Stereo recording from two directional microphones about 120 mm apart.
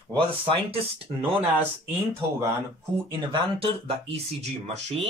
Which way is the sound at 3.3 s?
50° right (ahead or behind).